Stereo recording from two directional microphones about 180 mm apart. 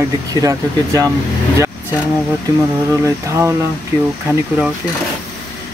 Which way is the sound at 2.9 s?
15° right (ahead or behind).